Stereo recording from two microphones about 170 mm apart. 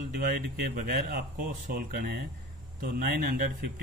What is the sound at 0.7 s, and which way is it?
Speech, 55° right (ahead or behind).